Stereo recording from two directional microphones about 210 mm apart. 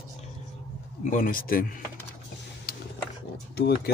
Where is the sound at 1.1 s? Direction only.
40° left (ahead or behind).